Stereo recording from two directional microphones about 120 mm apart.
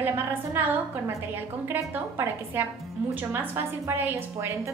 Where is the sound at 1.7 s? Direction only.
20° right (ahead or behind).